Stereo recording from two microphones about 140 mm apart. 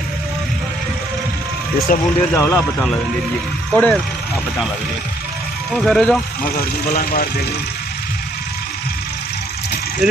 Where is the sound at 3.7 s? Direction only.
Centre (ahead or behind).